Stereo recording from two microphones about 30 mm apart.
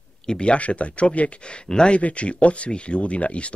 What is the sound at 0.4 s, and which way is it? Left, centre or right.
Speech, left.